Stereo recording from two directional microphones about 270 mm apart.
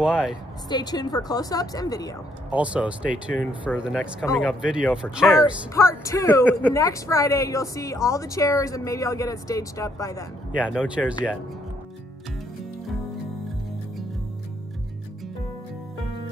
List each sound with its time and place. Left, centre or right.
0.0 s speech: centre
0.7 s speech: centre
2.5 s speech: centre
5.4 s speech: centre